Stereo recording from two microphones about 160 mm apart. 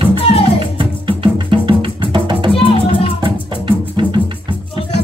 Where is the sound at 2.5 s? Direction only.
35° left (ahead or behind).